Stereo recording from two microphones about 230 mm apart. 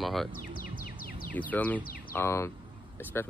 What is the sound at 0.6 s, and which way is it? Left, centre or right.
Music, left.